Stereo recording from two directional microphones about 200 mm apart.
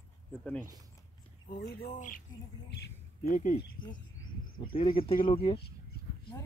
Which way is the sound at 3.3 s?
40° left (ahead or behind).